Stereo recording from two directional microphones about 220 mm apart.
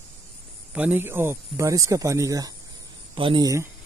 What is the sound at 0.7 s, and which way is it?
Speech, 5° right (ahead or behind).